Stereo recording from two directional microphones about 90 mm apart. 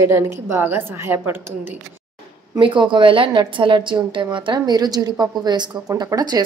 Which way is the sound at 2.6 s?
65° right (ahead or behind).